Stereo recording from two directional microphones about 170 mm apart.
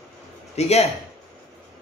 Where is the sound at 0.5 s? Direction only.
40° left (ahead or behind).